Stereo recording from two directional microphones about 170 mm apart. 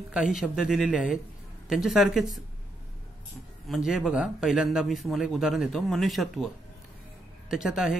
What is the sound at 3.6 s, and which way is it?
A man's voice, centre (ahead or behind).